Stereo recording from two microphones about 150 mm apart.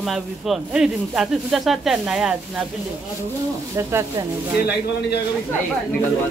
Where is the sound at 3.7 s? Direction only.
20° right (ahead or behind).